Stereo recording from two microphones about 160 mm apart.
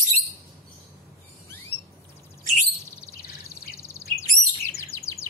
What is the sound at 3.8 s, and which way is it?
Bird vocalization, 20° left (ahead or behind).